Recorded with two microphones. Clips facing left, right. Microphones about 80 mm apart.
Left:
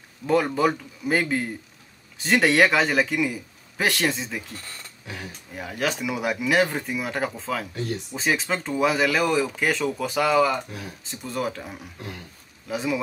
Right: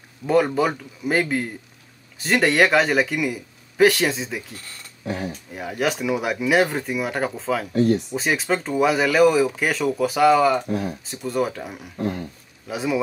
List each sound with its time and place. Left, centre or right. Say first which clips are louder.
0.3 s speech: right 2 dB; centre
5.0 s speech: right 10 dB; right
5.5 s speech: right 2 dB; centre
7.7 s speech: right 11 dB; right
8.1 s speech: right 3 dB; centre
10.7 s speech: right 12 dB; right
11.1 s speech: right 2 dB; centre